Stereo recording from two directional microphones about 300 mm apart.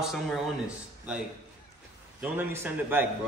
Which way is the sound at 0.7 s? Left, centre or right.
Centre.